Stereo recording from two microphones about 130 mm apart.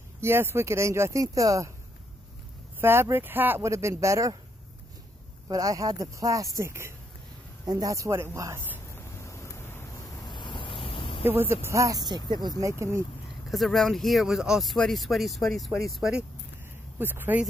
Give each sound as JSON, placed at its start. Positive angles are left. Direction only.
{"t": 0.2, "sound": "speech", "side_deg": -20}
{"t": 2.8, "sound": "speech", "side_deg": -20}
{"t": 5.5, "sound": "speech", "side_deg": -25}
{"t": 8.9, "sound": "a sound", "side_deg": 20}
{"t": 11.2, "sound": "speech", "side_deg": -15}
{"t": 13.5, "sound": "speech", "side_deg": 0}
{"t": 17.0, "sound": "speech", "side_deg": -15}